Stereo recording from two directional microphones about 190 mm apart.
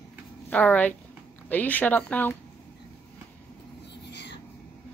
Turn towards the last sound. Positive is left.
turn(degrees=65)  # may be behind; listen again after turning